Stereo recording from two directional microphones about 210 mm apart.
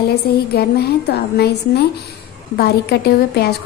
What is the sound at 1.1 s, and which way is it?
A woman's voice, 50° left (ahead or behind).